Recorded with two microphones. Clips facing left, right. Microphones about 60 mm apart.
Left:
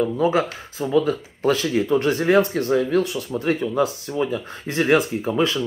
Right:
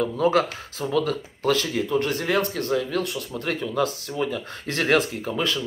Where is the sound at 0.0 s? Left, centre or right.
Centre.